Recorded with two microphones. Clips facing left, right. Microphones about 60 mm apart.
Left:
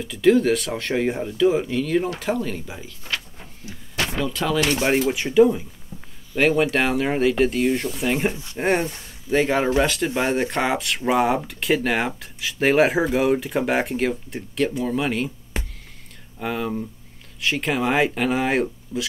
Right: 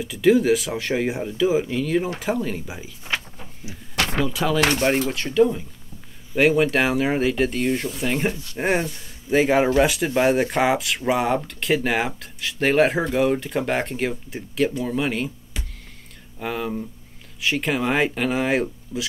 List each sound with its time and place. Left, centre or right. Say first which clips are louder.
0.0 s speech: even; centre
3.1 s a sound: right 2 dB; right
3.9 s a sound: right 2 dB; right
4.2 s speech: right 1 dB; centre
4.7 s speech: left 1 dB; centre
6.3 s speech: right 1 dB; centre
8.3 s speech: right 2 dB; left
8.5 s speech: left 1 dB; centre
15.5 s music: left 5 dB; left
16.3 s speech: left 1 dB; centre